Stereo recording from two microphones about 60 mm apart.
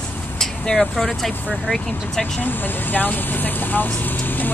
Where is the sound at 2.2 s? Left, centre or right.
Left.